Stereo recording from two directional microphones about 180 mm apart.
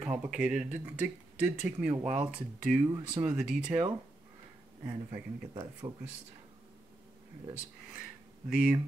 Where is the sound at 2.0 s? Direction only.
40° right (ahead or behind).